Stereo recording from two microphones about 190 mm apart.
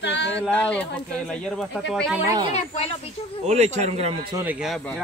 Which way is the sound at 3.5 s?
35° right (ahead or behind).